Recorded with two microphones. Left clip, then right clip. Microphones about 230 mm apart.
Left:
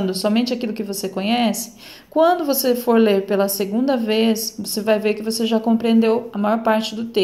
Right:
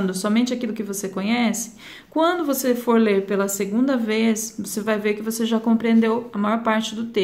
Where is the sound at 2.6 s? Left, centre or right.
Centre.